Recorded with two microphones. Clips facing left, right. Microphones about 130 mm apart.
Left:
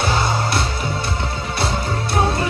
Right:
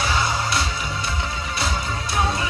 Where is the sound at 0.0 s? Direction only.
25° left (ahead or behind).